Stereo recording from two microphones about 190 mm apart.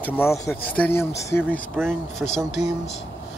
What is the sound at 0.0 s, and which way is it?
Speech, 10° left (ahead or behind).